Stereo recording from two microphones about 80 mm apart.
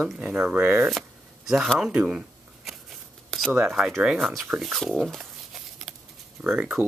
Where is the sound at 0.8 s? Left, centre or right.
Centre.